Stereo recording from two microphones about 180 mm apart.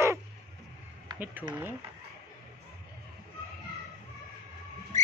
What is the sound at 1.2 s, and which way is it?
Speech, 10° right (ahead or behind).